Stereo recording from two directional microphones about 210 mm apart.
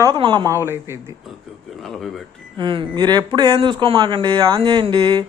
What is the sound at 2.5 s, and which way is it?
Speech, 25° right (ahead or behind).